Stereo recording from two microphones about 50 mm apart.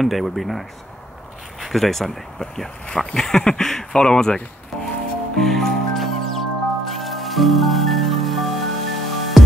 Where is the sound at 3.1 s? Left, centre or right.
Centre.